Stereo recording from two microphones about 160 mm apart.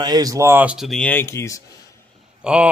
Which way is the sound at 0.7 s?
Centre (ahead or behind).